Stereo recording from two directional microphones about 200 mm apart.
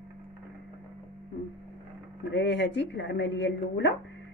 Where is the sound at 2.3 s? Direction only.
60° left (ahead or behind).